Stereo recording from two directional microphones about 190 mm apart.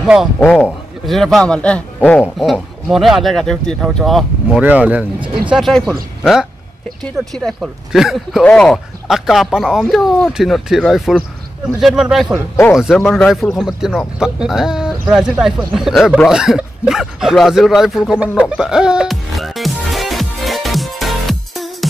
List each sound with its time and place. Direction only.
0.0 s a man's voice: centre (ahead or behind)
5.2 s speech: 25° right (ahead or behind)
5.5 s speech: centre (ahead or behind)
7.0 s speech: 5° left (ahead or behind)